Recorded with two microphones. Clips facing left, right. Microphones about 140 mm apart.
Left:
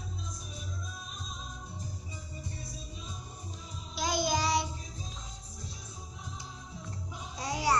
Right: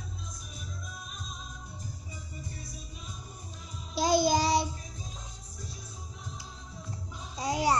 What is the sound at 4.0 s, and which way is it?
Child singing, 35° right (ahead or behind).